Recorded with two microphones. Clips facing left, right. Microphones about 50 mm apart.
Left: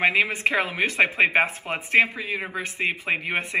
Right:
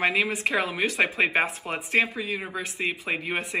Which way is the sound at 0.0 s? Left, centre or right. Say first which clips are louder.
Left 3 dB; left.